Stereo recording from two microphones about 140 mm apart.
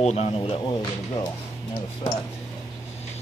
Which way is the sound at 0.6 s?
30° left (ahead or behind).